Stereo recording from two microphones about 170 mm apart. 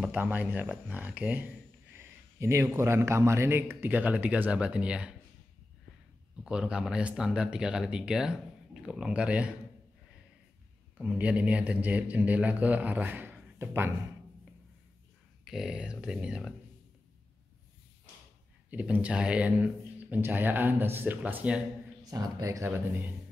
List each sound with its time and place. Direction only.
0.0 s a man's voice: 10° right (ahead or behind)
6.4 s speech: 5° right (ahead or behind)
11.0 s a man's voice: 10° right (ahead or behind)
15.4 s speech: 5° right (ahead or behind)
18.7 s a man's voice: 10° right (ahead or behind)
22.0 s speech: 20° right (ahead or behind)